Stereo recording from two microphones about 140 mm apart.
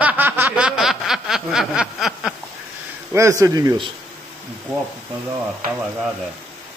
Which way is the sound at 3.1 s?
20° right (ahead or behind).